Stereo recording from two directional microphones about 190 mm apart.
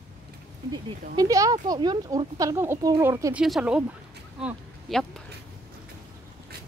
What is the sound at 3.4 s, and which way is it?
Speech, 5° right (ahead or behind).